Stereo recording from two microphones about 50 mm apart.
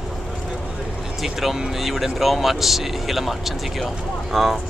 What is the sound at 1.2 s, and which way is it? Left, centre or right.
Speech, centre.